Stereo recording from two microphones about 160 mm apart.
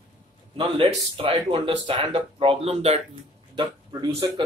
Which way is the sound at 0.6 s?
35° right (ahead or behind).